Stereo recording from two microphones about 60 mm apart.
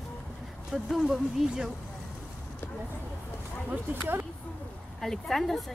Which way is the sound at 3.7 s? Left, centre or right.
Right.